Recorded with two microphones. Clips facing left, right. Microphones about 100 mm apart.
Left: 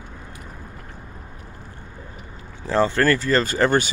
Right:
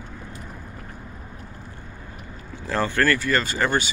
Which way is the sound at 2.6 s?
20° left (ahead or behind).